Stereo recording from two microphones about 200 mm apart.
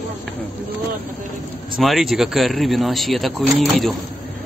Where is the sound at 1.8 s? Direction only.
Centre (ahead or behind).